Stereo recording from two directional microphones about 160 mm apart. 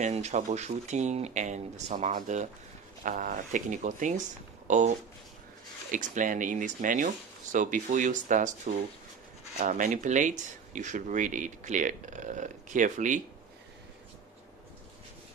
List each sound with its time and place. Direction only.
0.0 s speech: 45° right (ahead or behind)